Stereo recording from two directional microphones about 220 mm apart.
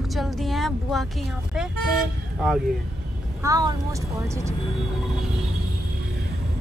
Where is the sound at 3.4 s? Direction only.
15° right (ahead or behind).